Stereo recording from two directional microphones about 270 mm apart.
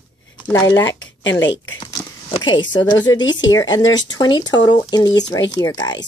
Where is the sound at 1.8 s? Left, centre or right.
Centre.